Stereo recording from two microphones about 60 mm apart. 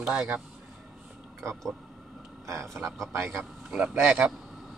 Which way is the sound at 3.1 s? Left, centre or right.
Right.